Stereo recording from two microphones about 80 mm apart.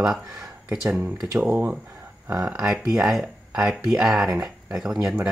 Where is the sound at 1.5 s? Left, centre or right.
Right.